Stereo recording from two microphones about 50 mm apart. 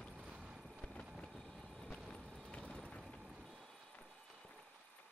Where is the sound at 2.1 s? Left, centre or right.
Left.